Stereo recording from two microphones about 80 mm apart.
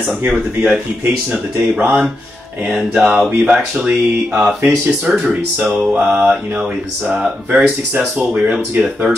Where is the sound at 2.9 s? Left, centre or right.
Centre.